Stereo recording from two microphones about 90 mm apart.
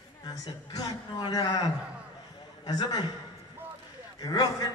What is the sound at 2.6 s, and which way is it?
Speech, 50° left (ahead or behind).